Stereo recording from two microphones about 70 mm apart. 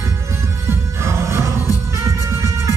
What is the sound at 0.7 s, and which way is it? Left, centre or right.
Music, right.